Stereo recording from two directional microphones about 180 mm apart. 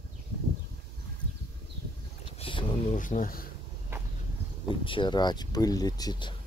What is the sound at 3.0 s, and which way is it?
Speech, 50° left (ahead or behind).